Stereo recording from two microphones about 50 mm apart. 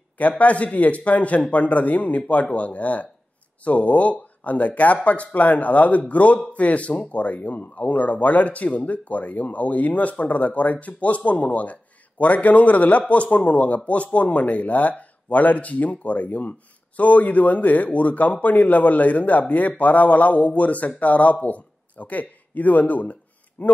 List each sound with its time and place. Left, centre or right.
0.2 s a man's voice: left